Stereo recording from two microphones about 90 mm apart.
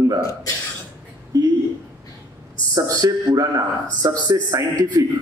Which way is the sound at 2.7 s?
45° right (ahead or behind).